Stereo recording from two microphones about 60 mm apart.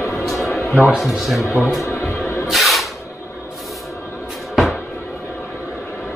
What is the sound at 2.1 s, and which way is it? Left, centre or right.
Spray, left.